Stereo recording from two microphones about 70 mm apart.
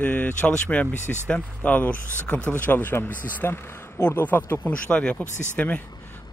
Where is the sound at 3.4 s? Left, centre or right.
Left; by 5.5 s centre.